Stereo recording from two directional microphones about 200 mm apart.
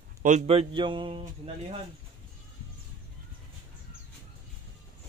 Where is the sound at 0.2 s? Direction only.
35° right (ahead or behind).